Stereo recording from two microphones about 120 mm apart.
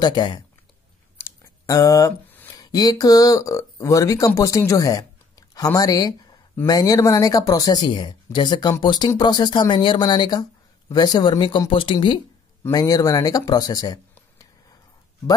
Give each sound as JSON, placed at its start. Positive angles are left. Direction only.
{"t": 0.0, "sound": "speech", "side_deg": 40}
{"t": 1.1, "sound": "a sound", "side_deg": 20}
{"t": 2.5, "sound": "speech", "side_deg": 35}
{"t": 12.7, "sound": "speech", "side_deg": 30}